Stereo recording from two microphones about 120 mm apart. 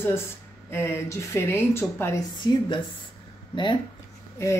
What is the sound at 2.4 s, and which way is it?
Speech, 30° left (ahead or behind).